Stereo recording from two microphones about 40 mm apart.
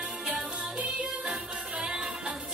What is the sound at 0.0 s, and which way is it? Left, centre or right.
Music, right.